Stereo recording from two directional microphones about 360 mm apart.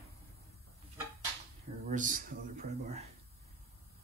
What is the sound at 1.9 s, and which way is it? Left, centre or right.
Speech, right.